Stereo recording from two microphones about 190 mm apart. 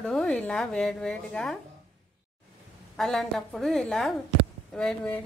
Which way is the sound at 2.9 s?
Centre (ahead or behind).